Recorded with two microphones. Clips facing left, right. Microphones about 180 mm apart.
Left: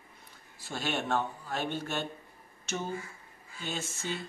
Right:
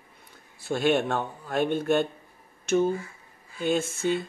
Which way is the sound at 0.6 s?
55° right (ahead or behind).